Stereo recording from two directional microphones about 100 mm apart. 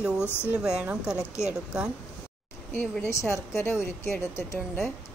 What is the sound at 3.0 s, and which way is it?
Speech, 30° left (ahead or behind).